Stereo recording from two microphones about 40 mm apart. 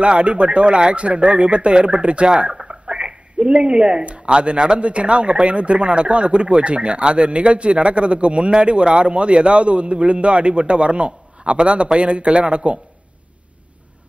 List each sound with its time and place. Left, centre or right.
0.0 s speech: right